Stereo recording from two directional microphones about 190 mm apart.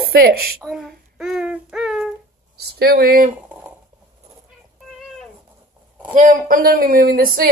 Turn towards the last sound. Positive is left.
turn(degrees=-50)  # may be behind; listen again after turning